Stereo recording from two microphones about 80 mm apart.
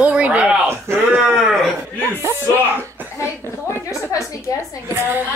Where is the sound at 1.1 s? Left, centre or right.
Centre.